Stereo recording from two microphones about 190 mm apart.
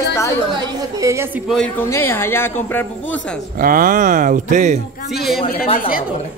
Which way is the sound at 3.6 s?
45° right (ahead or behind).